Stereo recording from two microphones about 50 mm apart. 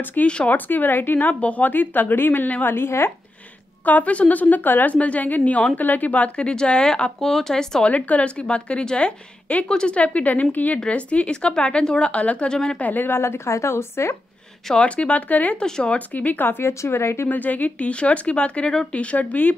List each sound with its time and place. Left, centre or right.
0.0 s a woman's voice: left
1.4 s a woman's voice: left
3.8 s a woman's voice: left; by 7.8 s centre
7.8 s speech: left
12.8 s a woman's voice: left
13.1 s speech: left
13.5 s speech: left
14.8 s speech: left
15.5 s speech: centre
15.9 s speech: left
17.3 s speech: left